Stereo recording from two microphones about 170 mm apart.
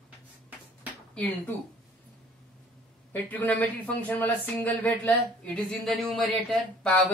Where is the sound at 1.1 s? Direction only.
10° left (ahead or behind).